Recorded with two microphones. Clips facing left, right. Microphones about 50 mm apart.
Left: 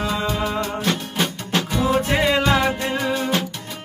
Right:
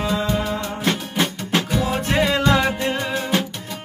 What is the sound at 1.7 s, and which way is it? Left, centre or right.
Music, centre.